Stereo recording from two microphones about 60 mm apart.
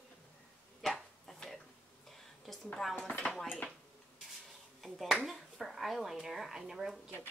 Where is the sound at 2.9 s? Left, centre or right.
Left.